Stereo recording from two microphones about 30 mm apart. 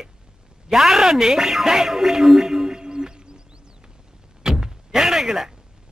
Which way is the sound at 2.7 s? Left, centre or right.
Right.